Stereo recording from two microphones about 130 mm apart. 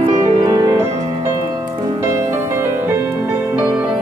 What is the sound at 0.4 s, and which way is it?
Music, 30° right (ahead or behind).